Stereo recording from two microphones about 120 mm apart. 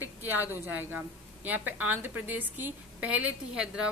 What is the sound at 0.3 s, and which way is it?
Speech, 15° right (ahead or behind).